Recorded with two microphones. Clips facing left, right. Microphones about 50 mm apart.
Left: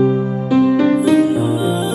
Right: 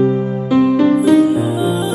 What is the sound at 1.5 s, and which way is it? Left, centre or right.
Music, centre.